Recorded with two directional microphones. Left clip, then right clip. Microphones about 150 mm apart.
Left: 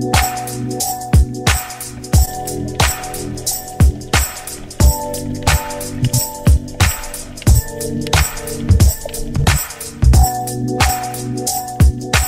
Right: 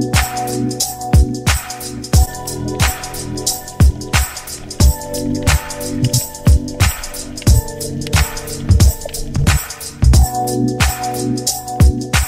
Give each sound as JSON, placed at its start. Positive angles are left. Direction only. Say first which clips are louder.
{"t": 0.1, "sound": "music", "louder": "left 1 dB", "side_deg": 10}
{"t": 4.1, "sound": "music", "louder": "left 2 dB", "side_deg": 10}